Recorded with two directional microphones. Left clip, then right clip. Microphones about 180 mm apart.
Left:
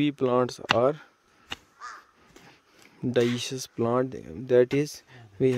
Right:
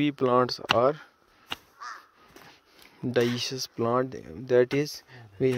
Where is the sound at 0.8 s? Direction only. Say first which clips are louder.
Right 1 dB; 30° left (ahead or behind).